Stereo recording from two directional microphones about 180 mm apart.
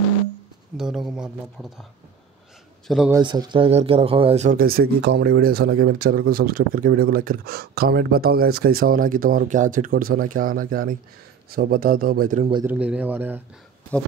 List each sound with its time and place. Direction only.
0.7 s speech: 5° right (ahead or behind)
2.9 s speech: centre (ahead or behind)
3.3 s speech: 25° right (ahead or behind)
4.6 s speech: 55° right (ahead or behind)
12.6 s speech: 5° right (ahead or behind)